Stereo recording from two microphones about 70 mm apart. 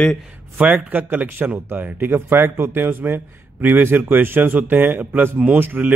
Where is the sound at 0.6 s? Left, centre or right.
Right.